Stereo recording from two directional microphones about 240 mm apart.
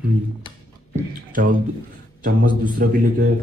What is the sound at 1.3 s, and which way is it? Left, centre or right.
A man's voice, right.